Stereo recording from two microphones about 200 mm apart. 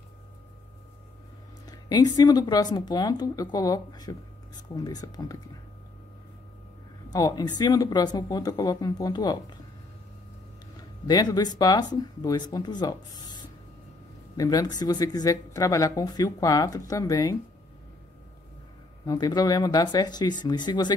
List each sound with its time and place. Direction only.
1.7 s speech: 20° left (ahead or behind)
7.1 s speech: 20° left (ahead or behind)
10.8 s speech: 20° left (ahead or behind)
19.0 s speech: 20° left (ahead or behind)